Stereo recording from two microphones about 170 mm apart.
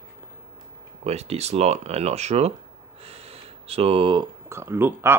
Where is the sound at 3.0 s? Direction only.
35° right (ahead or behind).